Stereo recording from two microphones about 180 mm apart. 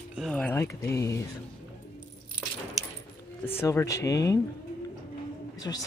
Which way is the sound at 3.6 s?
15° left (ahead or behind).